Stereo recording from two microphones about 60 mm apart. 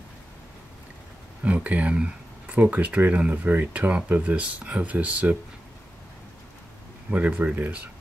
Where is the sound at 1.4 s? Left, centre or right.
Right.